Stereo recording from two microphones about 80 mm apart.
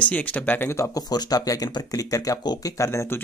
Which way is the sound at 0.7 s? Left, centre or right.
Left.